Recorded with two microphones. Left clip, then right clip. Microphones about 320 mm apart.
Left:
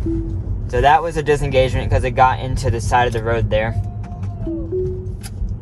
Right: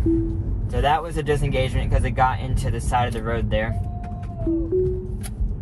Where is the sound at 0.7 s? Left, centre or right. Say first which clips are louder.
Left 8 dB; left.